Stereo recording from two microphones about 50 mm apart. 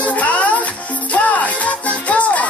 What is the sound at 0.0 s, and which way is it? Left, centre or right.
Music, left.